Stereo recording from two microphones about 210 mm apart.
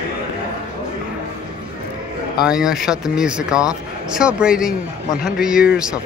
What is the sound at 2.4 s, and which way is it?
A man's voice, 5° right (ahead or behind).